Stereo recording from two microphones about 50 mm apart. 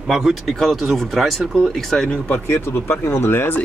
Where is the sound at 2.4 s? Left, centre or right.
Left.